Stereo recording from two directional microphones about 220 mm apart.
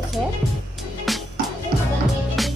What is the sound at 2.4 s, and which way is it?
Music, centre (ahead or behind).